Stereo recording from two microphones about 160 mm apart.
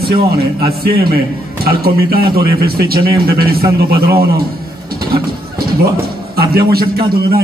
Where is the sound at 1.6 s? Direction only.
75° right (ahead or behind).